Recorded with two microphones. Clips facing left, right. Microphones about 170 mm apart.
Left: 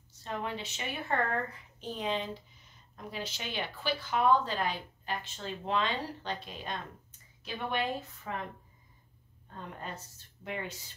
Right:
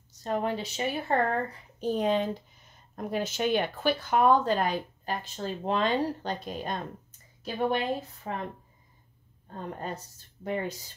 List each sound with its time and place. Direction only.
0.2 s speech: 40° right (ahead or behind)
9.5 s speech: 40° right (ahead or behind)